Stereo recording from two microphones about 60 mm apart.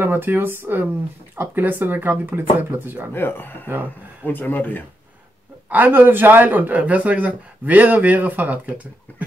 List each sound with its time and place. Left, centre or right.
0.0 s speech: right
3.1 s speech: left
5.7 s speech: right